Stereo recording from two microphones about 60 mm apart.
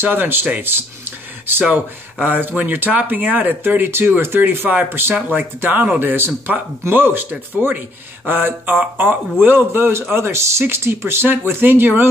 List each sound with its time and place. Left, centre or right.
0.0 s speech: right
2.2 s speech: right
4.6 s speech: right